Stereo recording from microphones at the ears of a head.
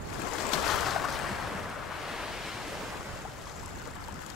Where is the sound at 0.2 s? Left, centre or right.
Left.